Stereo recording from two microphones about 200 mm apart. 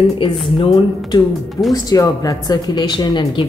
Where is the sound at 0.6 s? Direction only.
25° left (ahead or behind).